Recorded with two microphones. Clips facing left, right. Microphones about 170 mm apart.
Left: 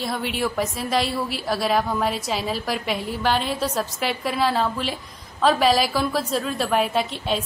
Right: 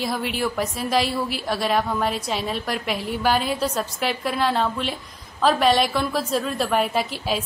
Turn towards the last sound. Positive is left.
turn(degrees=-5)  # may be behind; listen again after turning